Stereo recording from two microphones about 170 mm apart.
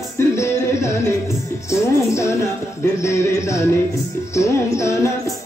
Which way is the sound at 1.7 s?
15° left (ahead or behind).